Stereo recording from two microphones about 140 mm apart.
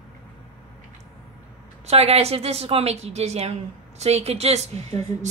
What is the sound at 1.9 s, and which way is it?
A woman's voice, 45° right (ahead or behind).